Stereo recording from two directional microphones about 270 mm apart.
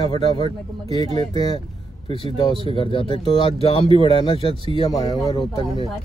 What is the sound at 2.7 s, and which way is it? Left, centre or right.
Speech, centre.